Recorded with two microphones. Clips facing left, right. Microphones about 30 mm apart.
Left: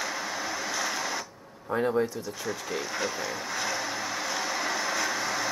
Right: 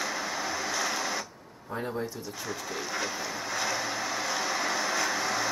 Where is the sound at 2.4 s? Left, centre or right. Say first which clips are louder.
Left 2 dB; centre.